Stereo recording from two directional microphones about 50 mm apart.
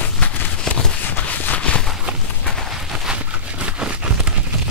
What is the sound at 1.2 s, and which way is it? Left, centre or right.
Clip-clop, left.